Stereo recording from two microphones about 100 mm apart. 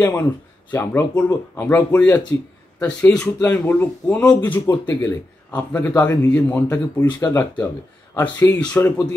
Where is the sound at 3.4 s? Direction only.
20° left (ahead or behind).